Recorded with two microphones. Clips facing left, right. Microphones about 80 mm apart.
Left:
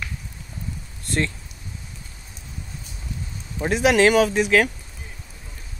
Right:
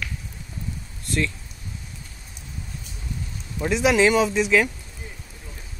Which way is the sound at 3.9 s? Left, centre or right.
Left.